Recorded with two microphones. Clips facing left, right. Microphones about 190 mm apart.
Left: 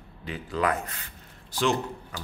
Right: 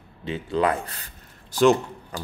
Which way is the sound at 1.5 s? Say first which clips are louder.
Right 8 dB; 45° right (ahead or behind).